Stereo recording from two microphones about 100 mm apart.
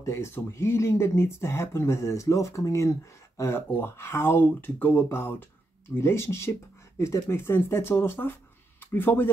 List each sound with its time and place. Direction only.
0.0 s speech: 25° left (ahead or behind)